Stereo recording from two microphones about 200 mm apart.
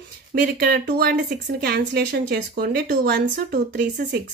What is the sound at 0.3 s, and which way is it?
Speech, 50° right (ahead or behind).